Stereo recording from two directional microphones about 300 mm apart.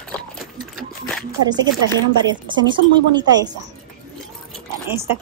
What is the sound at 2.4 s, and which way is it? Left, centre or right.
Speech, centre.